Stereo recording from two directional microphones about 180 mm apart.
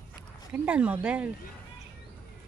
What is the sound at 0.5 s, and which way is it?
Speech, 5° right (ahead or behind).